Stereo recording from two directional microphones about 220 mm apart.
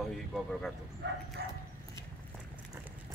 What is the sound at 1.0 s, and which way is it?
Bow-wow, 55° right (ahead or behind).